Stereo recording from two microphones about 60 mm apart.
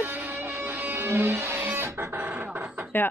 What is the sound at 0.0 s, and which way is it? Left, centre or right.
Music, right.